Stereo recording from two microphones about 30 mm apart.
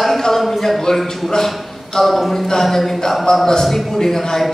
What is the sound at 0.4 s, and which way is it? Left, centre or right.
Speech, centre.